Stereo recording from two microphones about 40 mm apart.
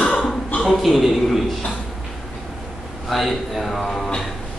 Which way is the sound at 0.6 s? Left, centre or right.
Centre.